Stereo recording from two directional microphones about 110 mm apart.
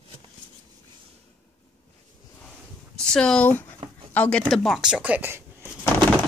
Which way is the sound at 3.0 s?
5° left (ahead or behind).